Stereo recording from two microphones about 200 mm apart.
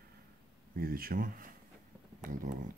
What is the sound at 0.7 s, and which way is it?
Speech, 45° right (ahead or behind).